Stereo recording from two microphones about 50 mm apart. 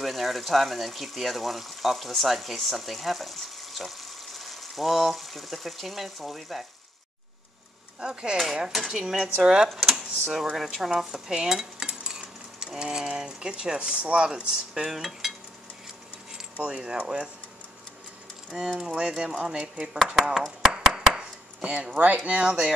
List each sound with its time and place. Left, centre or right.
0.0 s speech: centre
8.0 s speech: centre
9.7 s speech: centre
10.5 s cutlery: centre
16.5 s speech: right
18.5 s speech: centre
20.7 s chopping: centre
21.6 s speech: right